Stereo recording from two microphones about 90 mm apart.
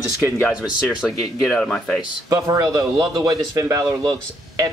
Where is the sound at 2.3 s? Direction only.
45° right (ahead or behind).